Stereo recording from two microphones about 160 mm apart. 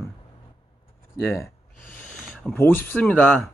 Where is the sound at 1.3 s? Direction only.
15° left (ahead or behind).